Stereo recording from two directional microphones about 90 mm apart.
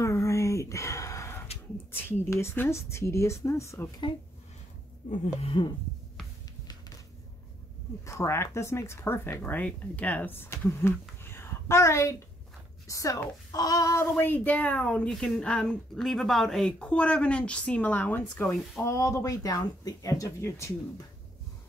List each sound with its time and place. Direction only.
0.0 s a sound: 35° left (ahead or behind)
1.9 s speech: 25° left (ahead or behind)
5.4 s speech: 70° left (ahead or behind)
8.0 s speech: 30° left (ahead or behind)
14.1 s speech: 20° left (ahead or behind)
15.0 s speech: 5° left (ahead or behind)
18.8 s speech: 35° left (ahead or behind)